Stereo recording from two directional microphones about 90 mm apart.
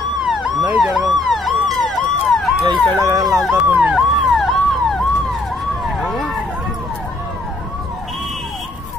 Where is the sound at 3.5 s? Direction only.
15° right (ahead or behind).